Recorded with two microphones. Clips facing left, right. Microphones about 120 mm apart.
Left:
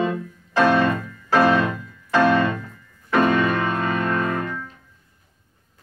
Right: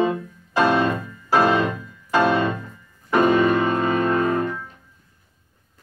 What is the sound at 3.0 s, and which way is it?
Piano, 15° right (ahead or behind).